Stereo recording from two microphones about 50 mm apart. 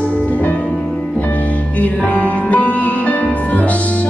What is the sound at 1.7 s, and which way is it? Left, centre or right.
Music, left.